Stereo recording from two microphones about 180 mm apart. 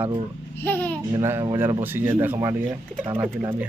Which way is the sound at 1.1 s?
20° right (ahead or behind).